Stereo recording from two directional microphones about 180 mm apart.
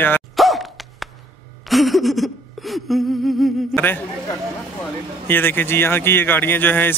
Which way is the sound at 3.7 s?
10° left (ahead or behind).